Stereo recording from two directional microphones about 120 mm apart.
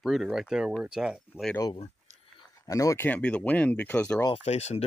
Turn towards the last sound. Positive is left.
turn(degrees=65)  # may be behind; listen again after turning